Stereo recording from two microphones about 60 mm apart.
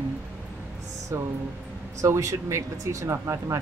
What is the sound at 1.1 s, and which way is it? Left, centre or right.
Speech, right.